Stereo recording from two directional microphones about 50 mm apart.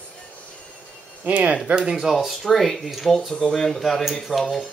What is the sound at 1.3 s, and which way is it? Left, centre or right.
Speech, right.